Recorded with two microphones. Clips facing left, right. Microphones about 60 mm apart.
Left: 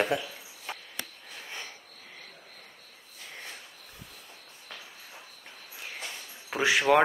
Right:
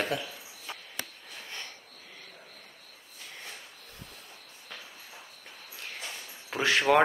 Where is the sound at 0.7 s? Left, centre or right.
Left.